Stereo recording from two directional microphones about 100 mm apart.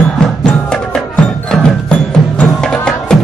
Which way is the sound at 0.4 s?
5° left (ahead or behind).